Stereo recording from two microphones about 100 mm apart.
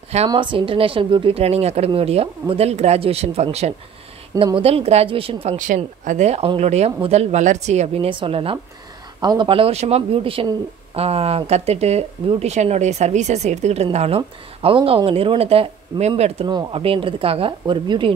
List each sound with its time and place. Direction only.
0.3 s a woman's voice: 55° right (ahead or behind); by 3.4 s 90° right
4.6 s speech: 80° right
8.1 s a woman's voice: 60° right (ahead or behind)
9.2 s speech: 45° right (ahead or behind)
9.5 s speech: 75° right (ahead or behind)
11.0 s speech: 85° right
16.7 s a woman's voice: 65° right (ahead or behind)